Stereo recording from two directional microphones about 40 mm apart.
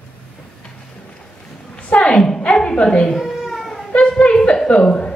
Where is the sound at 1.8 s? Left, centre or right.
Left.